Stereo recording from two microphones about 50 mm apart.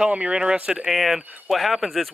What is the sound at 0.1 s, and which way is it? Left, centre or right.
Speech, right.